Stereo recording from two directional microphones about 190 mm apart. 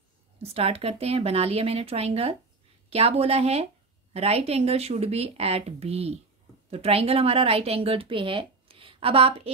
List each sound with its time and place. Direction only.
0.4 s a woman's voice: 30° right (ahead or behind)